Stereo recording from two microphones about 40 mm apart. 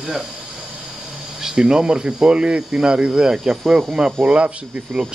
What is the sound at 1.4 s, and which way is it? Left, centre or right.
Speech, centre.